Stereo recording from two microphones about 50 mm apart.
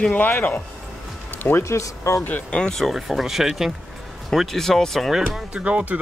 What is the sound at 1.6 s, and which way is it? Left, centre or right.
Speech, left.